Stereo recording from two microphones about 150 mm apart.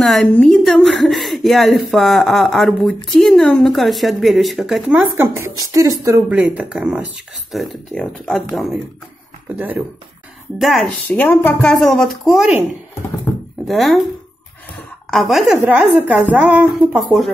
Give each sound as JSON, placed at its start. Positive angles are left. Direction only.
{"t": 0.0, "sound": "a woman's voice", "side_deg": 5}
{"t": 5.1, "sound": "speech", "side_deg": -15}
{"t": 6.2, "sound": "a woman's voice", "side_deg": -10}
{"t": 9.6, "sound": "speech", "side_deg": -10}
{"t": 10.6, "sound": "a woman's voice", "side_deg": 0}
{"t": 11.1, "sound": "a woman's voice", "side_deg": 10}
{"t": 13.3, "sound": "a sound", "side_deg": 10}
{"t": 13.7, "sound": "a woman's voice", "side_deg": 0}
{"t": 15.0, "sound": "a woman's voice", "side_deg": 0}